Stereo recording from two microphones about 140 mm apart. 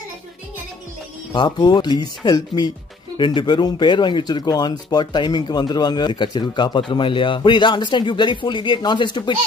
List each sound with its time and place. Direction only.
1.3 s speech: 30° left (ahead or behind)